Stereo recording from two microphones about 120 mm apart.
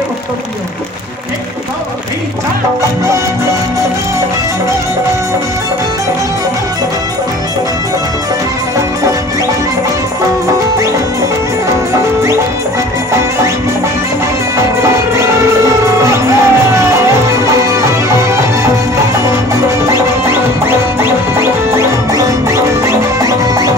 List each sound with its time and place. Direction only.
14.8 s music: 25° right (ahead or behind)